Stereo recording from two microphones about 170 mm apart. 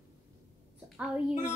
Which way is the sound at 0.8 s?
5° right (ahead or behind).